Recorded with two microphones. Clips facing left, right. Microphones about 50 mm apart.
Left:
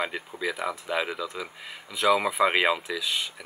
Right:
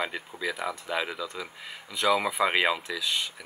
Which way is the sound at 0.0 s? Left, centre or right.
Centre.